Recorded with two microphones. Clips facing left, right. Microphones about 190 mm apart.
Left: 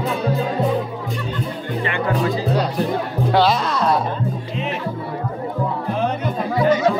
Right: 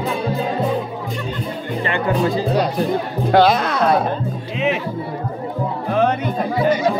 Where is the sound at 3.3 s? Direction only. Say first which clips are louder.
Right 3 dB; 50° right (ahead or behind).